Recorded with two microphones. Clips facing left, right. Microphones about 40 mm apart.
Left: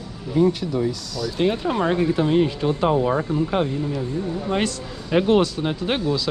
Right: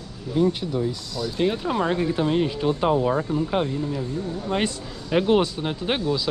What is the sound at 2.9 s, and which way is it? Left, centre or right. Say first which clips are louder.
Speech: left 1 dB; centre.